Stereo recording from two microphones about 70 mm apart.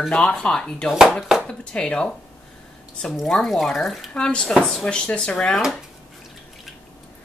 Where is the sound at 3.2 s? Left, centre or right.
Centre.